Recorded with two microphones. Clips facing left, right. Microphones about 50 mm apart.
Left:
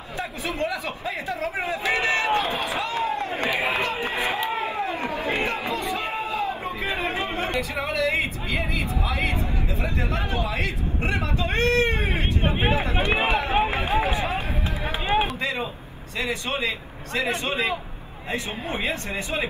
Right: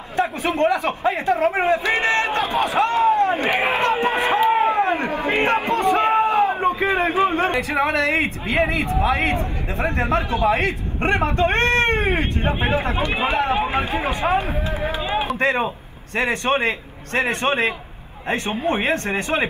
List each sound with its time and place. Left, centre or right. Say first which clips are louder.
0.2 s speech: right 9 dB; right
3.4 s a sound: right 5 dB; right
7.7 s speech: right 4 dB; right
14.9 s run: left 2 dB; left
15.3 s speech: right 8 dB; right